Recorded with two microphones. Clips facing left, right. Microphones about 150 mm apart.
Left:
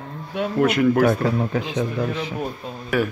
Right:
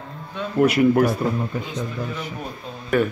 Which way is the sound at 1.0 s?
85° left.